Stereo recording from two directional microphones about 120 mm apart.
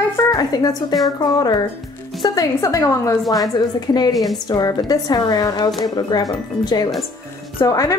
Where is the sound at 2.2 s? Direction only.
30° left (ahead or behind).